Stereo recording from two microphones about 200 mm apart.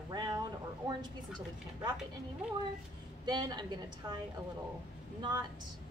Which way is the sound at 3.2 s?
20° right (ahead or behind).